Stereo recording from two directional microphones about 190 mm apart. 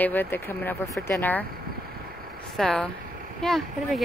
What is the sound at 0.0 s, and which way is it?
A woman's voice, 10° left (ahead or behind).